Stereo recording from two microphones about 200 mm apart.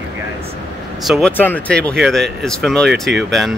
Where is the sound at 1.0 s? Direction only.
Centre (ahead or behind).